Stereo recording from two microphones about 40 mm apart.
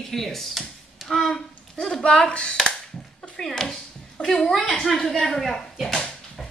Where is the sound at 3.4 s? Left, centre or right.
Centre.